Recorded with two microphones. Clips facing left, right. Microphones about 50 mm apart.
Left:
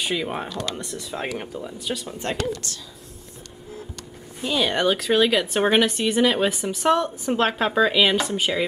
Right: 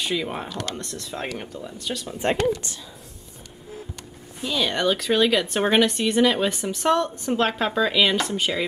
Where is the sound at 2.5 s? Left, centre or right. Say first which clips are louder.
Right 3 dB; centre.